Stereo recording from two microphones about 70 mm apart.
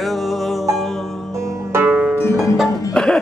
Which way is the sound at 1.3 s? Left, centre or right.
Right.